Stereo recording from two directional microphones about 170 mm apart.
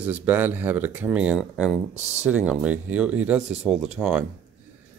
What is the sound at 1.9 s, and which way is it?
Speech, 40° right (ahead or behind).